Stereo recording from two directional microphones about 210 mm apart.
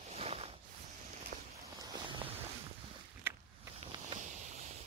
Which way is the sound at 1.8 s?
25° right (ahead or behind).